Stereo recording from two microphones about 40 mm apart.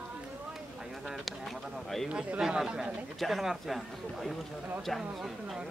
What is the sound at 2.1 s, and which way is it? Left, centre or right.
Speech, right.